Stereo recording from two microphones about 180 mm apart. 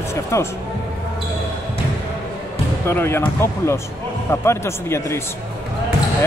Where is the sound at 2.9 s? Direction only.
15° left (ahead or behind).